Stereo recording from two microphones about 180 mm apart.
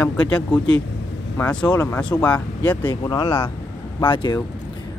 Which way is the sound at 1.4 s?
10° left (ahead or behind).